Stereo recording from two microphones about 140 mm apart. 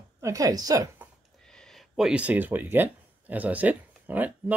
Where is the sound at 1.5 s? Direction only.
5° left (ahead or behind); by 4.5 s 10° right (ahead or behind).